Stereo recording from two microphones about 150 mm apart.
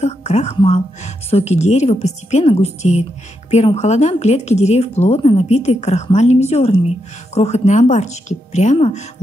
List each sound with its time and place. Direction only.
0.0 s a woman's voice: 50° left (ahead or behind)